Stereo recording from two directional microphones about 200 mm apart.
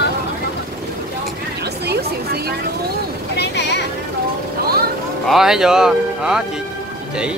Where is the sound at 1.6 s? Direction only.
55° right (ahead or behind).